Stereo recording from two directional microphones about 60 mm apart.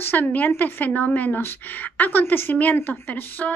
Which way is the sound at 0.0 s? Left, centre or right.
Left.